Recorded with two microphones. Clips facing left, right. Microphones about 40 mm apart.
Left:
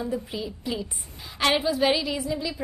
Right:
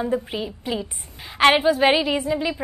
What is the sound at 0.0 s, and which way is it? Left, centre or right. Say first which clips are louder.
A woman's voice: right 5 dB; right.